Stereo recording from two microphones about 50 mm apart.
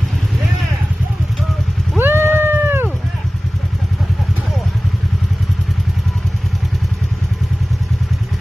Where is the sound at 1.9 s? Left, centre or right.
Right.